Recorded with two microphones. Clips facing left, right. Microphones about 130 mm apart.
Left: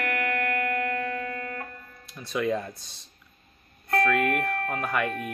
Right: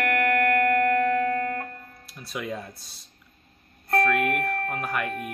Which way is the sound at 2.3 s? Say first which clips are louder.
Left 6 dB; 5° right (ahead or behind).